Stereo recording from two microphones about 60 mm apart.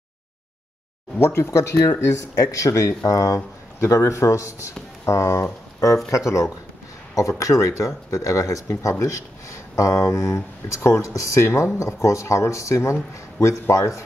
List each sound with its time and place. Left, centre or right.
1.1 s speech: left